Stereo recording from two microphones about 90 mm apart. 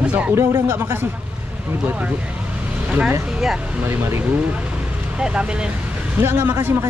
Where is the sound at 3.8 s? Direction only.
25° right (ahead or behind).